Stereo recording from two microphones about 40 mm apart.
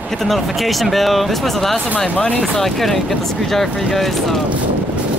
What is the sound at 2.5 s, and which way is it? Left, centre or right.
Speech, centre.